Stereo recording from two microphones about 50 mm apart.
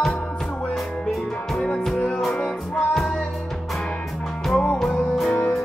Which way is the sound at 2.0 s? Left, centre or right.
Centre.